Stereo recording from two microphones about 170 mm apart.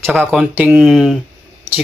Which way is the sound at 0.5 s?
10° right (ahead or behind).